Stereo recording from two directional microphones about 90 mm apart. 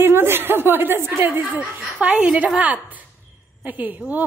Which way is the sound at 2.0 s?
10° right (ahead or behind).